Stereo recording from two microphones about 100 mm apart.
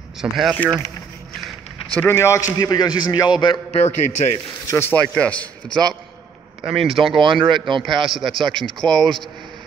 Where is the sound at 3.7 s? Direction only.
90° left.